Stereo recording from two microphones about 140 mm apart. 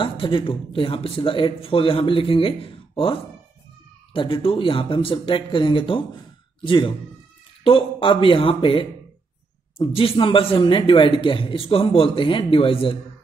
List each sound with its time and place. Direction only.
0.0 s speech: 40° left (ahead or behind)